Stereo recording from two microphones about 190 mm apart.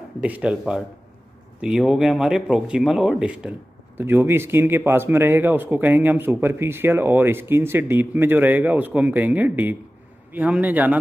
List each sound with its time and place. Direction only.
0.2 s speech: 5° right (ahead or behind)